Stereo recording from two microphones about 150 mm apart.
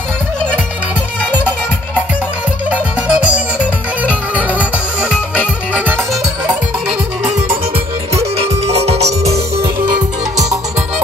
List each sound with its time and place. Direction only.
2.7 s music: 5° right (ahead or behind)
8.6 s music: 45° right (ahead or behind)
9.2 s music: 20° right (ahead or behind)